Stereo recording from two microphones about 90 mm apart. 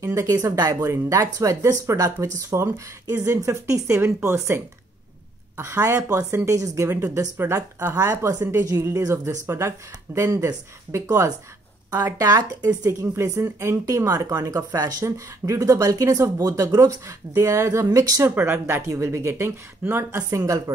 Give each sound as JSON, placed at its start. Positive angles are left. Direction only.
{"t": 0.0, "sound": "speech", "side_deg": -40}
{"t": 7.9, "sound": "speech", "side_deg": -40}
{"t": 11.9, "sound": "speech", "side_deg": -25}
{"t": 12.2, "sound": "speech", "side_deg": -40}
{"t": 18.3, "sound": "speech", "side_deg": -25}